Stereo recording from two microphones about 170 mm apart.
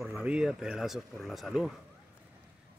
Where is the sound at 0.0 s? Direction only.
10° right (ahead or behind).